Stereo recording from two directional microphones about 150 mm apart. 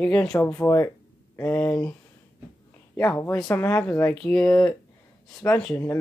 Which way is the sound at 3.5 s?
15° left (ahead or behind).